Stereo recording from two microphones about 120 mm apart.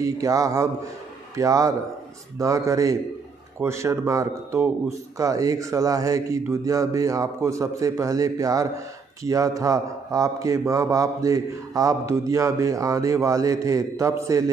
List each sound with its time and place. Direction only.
0.0 s a man's voice: 30° right (ahead or behind)